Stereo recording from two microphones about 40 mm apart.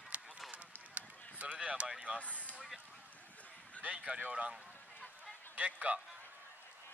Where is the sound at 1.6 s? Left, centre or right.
Right.